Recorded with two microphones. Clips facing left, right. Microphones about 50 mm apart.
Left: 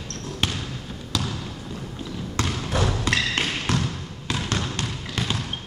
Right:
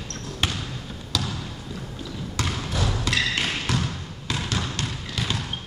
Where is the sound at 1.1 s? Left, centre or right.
Left.